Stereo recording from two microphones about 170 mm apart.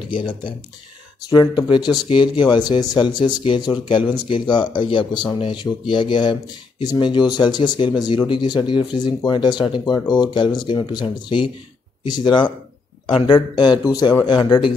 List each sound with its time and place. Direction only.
0.1 s speech: 30° left (ahead or behind)